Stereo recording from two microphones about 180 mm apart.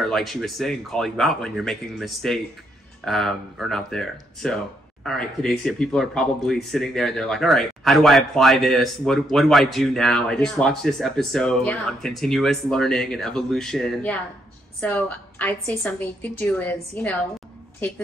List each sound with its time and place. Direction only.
0.0 s a woman's voice: centre (ahead or behind)